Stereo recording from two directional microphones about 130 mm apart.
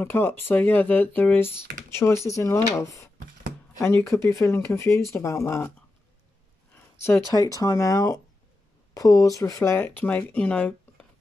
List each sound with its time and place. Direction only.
0.0 s speech: 20° left (ahead or behind)
7.3 s speech: 25° left (ahead or behind); by 10.7 s 10° left (ahead or behind)